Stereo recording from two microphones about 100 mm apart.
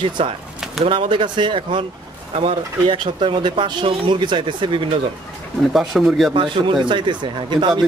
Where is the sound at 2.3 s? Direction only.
65° right (ahead or behind).